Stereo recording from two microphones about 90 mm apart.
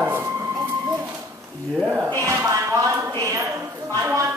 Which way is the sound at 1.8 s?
15° right (ahead or behind).